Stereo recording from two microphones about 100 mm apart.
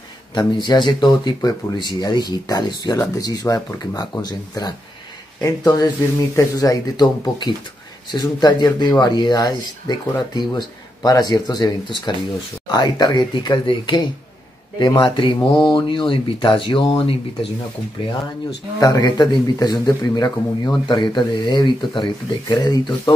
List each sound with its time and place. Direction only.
0.3 s speech: 45° left (ahead or behind); by 17.5 s 65° left (ahead or behind)
18.8 s speech: 40° left (ahead or behind)
20.8 s speech: 50° left (ahead or behind)